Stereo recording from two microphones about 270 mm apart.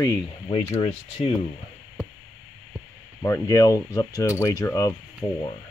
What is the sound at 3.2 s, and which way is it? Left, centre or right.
Speech, centre.